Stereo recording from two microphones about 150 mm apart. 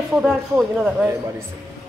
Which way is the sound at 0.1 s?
Centre (ahead or behind).